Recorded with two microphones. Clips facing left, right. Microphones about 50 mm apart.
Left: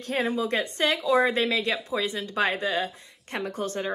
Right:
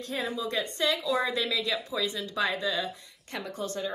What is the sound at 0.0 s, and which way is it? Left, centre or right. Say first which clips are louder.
Speech: left 6 dB; left.